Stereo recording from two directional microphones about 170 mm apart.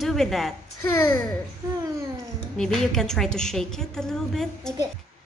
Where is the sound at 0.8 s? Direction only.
15° left (ahead or behind).